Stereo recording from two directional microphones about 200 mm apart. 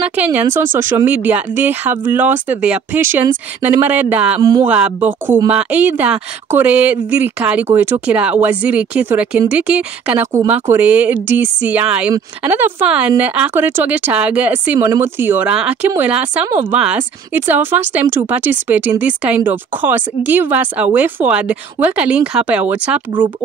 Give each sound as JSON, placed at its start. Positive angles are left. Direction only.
{"t": 0.0, "sound": "speech", "side_deg": -10}
{"t": 4.4, "sound": "speech", "side_deg": -20}
{"t": 4.6, "sound": "speech", "side_deg": -5}